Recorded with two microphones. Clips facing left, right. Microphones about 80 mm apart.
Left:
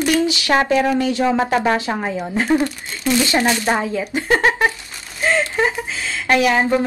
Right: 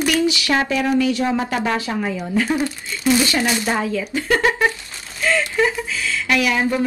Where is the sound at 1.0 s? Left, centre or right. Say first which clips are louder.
Left 2 dB; left.